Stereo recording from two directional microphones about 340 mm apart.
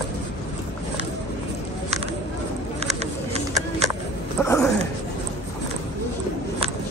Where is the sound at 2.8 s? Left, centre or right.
Centre.